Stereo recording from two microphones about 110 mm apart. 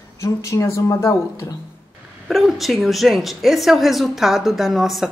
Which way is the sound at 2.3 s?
Centre (ahead or behind).